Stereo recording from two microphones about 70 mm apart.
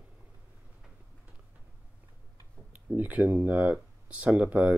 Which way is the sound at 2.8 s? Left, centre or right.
Right.